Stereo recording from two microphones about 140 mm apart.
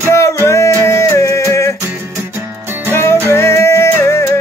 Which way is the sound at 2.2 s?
20° right (ahead or behind).